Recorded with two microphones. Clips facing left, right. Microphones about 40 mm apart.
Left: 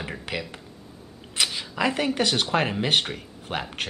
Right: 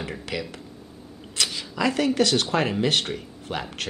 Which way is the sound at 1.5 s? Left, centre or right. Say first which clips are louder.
Right 3 dB; left.